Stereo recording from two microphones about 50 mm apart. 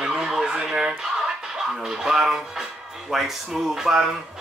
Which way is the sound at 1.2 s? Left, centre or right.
Centre.